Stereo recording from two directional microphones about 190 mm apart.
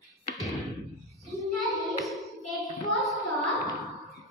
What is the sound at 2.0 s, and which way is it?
Singing, centre (ahead or behind).